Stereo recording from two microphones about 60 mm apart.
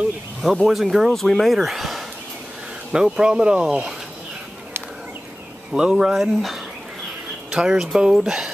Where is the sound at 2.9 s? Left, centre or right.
Centre.